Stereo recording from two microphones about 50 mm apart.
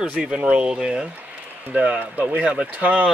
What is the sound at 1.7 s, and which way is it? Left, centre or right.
Speech, right.